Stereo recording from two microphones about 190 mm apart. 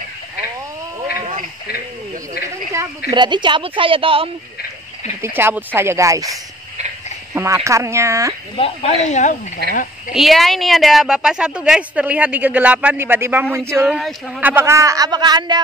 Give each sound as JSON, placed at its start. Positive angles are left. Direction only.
{"t": 1.2, "sound": "a sound", "side_deg": -45}
{"t": 3.1, "sound": "speech", "side_deg": -25}
{"t": 5.2, "sound": "a woman's voice", "side_deg": -10}
{"t": 7.3, "sound": "a woman's voice", "side_deg": -15}
{"t": 8.5, "sound": "speech", "side_deg": 30}
{"t": 10.1, "sound": "a woman's voice", "side_deg": 0}
{"t": 13.9, "sound": "speech", "side_deg": 0}
{"t": 14.5, "sound": "speech", "side_deg": -15}